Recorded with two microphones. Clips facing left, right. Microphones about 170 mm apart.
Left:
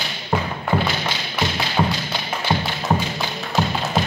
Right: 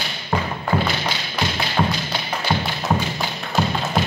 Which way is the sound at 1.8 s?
5° left (ahead or behind).